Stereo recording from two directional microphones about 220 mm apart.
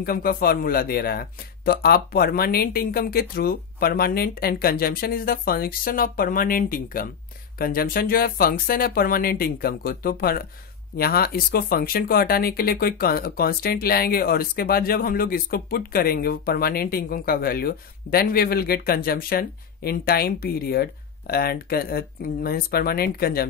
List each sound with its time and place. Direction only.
0.0 s speech: 40° left (ahead or behind)